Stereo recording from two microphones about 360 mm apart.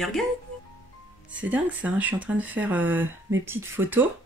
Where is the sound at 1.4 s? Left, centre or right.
Centre.